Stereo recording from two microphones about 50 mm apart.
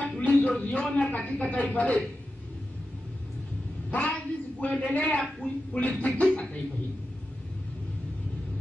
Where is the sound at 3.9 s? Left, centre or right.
Left.